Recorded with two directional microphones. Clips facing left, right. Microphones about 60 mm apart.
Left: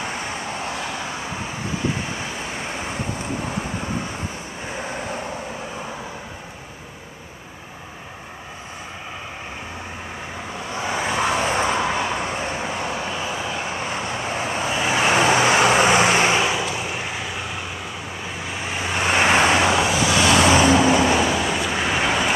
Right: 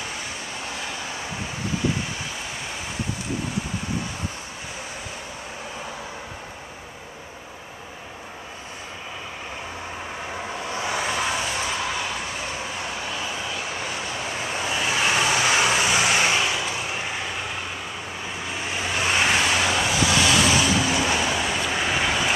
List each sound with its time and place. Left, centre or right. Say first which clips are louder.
10.7 s vehicle: left 3 dB; left
11.3 s vehicle: left 6 dB; left
13.1 s vehicle: left 3 dB; centre; by 16.3 s left
16.3 s vehicle: left 3 dB; centre
18.9 s vehicle: left 5 dB; left
19.6 s vehicle: left 4 dB; centre
20.2 s vehicle: left 5 dB; left
21.0 s vehicle: left 5 dB; centre
21.4 s vehicle: left 2 dB; centre